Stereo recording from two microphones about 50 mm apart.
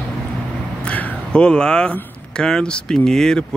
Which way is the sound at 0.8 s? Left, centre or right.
Left.